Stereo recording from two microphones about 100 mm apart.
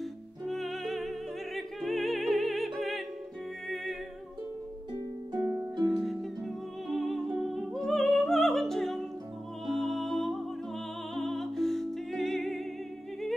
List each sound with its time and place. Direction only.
0.5 s music: centre (ahead or behind)
5.4 s harp: 20° right (ahead or behind)
5.9 s music: centre (ahead or behind)